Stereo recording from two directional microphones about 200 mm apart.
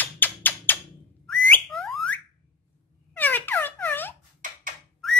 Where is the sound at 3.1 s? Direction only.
10° left (ahead or behind).